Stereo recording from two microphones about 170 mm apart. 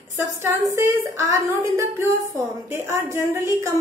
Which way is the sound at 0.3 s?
20° right (ahead or behind).